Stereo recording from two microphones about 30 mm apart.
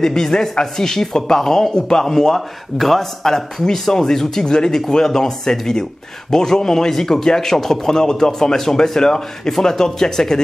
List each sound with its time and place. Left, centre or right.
0.0 s a man's voice: centre